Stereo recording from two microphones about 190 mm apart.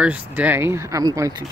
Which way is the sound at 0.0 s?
10° right (ahead or behind).